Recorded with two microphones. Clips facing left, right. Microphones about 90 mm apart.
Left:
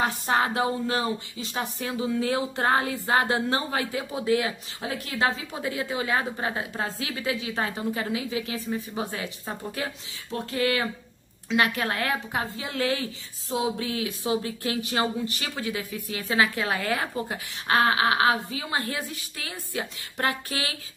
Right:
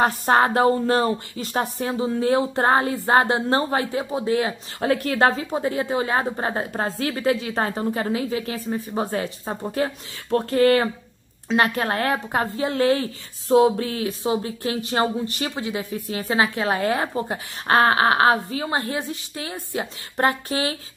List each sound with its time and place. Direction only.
0.0 s speech: 45° right (ahead or behind)
1.8 s a woman's voice: 35° right (ahead or behind)
4.7 s a woman's voice: 55° right (ahead or behind); by 18.8 s 40° right (ahead or behind)
18.8 s a woman's voice: 25° right (ahead or behind)